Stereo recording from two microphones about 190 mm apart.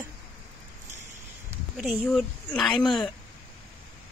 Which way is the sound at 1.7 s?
5° right (ahead or behind).